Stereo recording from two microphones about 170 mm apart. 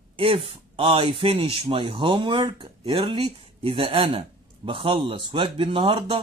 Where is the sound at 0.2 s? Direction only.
35° right (ahead or behind).